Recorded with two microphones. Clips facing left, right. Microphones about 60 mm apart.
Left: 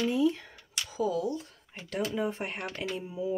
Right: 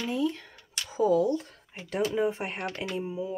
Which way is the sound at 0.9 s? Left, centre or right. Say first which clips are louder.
Right 6 dB; right.